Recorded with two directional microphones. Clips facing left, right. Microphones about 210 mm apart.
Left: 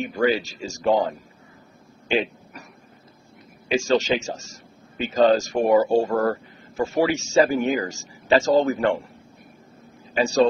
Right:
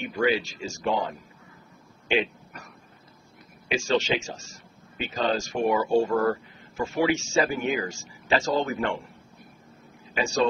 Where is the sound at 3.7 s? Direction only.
40° left (ahead or behind).